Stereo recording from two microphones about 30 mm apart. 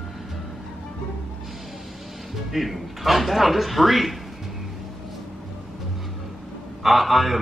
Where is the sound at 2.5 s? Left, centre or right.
Centre.